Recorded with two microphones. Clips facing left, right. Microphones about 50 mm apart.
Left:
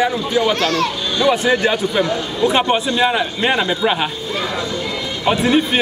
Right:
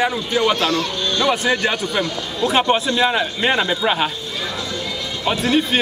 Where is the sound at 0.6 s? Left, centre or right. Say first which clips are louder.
Left 2 dB; left.